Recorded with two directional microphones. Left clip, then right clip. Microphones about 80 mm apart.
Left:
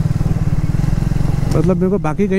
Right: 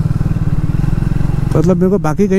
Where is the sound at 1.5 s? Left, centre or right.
Centre.